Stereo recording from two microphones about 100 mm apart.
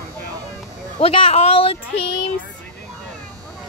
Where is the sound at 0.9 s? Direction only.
75° left (ahead or behind).